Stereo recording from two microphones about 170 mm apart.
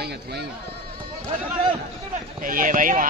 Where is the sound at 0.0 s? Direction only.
75° right (ahead or behind).